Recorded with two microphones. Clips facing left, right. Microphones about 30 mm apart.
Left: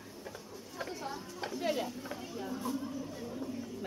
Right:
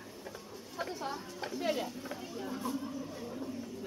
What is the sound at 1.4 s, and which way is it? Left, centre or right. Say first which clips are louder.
Speech: even; centre.